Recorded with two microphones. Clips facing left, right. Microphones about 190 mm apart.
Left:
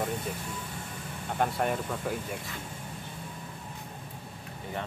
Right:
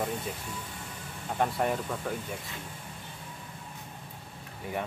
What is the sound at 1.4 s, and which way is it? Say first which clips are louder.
Speech: even; centre (ahead or behind).